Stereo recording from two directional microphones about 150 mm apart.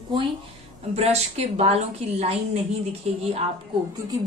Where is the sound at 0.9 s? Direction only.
45° right (ahead or behind).